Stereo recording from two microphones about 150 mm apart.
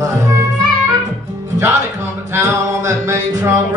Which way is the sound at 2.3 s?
20° right (ahead or behind).